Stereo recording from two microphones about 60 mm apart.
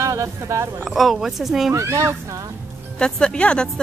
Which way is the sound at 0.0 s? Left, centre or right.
Right.